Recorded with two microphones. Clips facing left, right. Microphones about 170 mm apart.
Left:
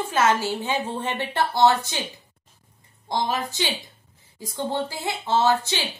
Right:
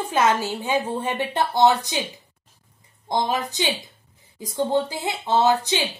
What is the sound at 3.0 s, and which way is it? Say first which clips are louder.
Speech: right 2 dB; 20° right (ahead or behind).